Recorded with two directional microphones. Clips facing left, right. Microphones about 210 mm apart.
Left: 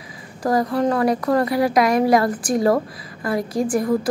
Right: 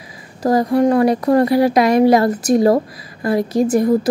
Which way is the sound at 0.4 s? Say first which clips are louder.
Right 5 dB; 25° right (ahead or behind).